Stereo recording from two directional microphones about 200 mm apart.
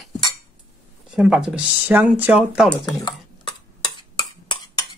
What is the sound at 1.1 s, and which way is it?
Speech, 5° right (ahead or behind).